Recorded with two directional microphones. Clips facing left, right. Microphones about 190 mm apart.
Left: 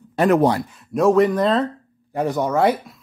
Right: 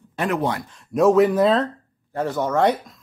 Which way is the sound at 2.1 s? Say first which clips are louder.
Left 2 dB; 15° left (ahead or behind).